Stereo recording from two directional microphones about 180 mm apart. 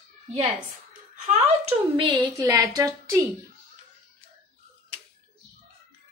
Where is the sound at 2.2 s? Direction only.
20° right (ahead or behind).